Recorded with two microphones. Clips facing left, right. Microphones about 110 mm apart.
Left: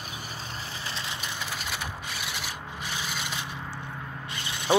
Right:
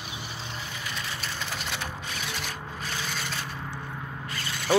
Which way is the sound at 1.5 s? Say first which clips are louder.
Right 1 dB; 5° left (ahead or behind).